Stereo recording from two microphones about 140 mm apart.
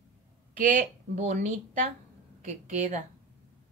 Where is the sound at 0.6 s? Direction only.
70° right (ahead or behind).